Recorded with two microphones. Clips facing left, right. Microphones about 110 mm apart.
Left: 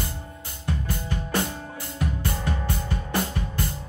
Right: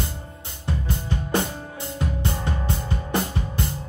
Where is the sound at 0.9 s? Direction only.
20° right (ahead or behind).